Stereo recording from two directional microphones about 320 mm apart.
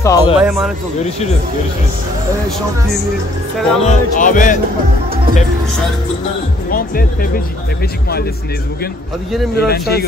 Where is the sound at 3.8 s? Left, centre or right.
Left.